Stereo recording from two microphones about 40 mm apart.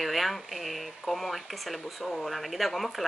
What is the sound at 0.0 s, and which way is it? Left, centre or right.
Speech, centre.